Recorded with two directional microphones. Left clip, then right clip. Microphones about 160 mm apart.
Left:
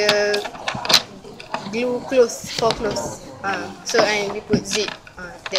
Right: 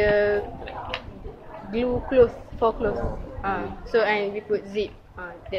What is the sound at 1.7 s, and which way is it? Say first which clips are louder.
Speech: left 2 dB; 10° left (ahead or behind).